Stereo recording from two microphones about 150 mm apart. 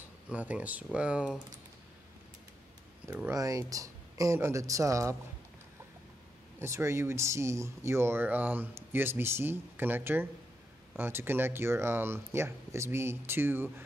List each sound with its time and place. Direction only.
0.3 s speech: 10° right (ahead or behind)
3.3 s speech: 20° right (ahead or behind)
6.6 s speech: 20° right (ahead or behind)